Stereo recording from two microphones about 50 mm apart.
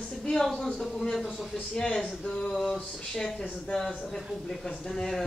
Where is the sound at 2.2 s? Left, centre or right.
Centre.